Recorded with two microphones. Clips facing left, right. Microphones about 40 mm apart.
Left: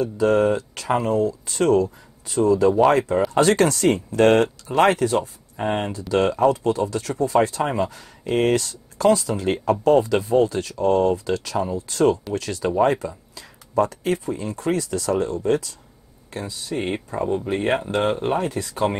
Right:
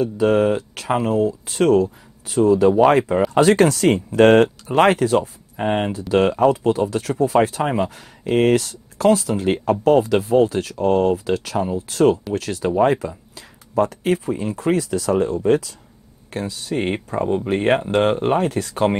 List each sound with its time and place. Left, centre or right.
0.0 s speech: centre
3.8 s speech: right
5.6 s speech: centre
11.2 s speech: right
14.5 s speech: centre
16.3 s speech: right
16.7 s speech: right
17.5 s speech: right
18.1 s speech: centre
18.4 s speech: right